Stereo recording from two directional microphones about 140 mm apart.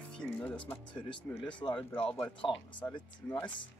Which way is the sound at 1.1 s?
35° left (ahead or behind).